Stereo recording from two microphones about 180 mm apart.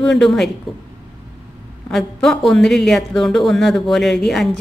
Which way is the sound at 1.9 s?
Centre (ahead or behind).